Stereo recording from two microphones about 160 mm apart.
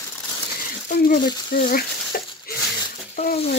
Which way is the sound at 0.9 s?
70° left (ahead or behind).